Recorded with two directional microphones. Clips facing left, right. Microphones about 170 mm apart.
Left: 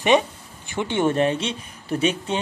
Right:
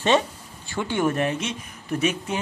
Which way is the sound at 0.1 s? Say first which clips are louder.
Left 3 dB; 20° left (ahead or behind).